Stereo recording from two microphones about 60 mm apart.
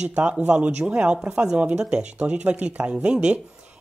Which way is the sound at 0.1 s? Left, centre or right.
Right.